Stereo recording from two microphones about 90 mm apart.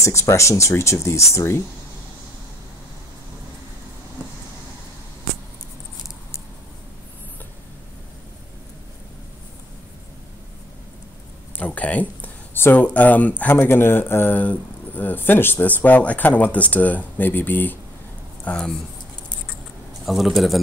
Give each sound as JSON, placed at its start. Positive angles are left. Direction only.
{"t": 0.0, "sound": "speech", "side_deg": 30}
{"t": 11.5, "sound": "a sound", "side_deg": 20}
{"t": 12.8, "sound": "speech", "side_deg": 20}
{"t": 20.1, "sound": "a man's voice", "side_deg": 0}